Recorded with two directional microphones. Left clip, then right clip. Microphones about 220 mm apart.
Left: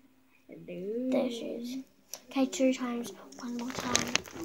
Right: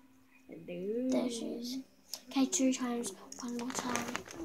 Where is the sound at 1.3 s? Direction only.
15° left (ahead or behind).